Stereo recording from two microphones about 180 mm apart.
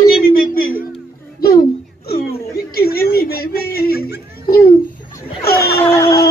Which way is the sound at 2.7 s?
55° left (ahead or behind).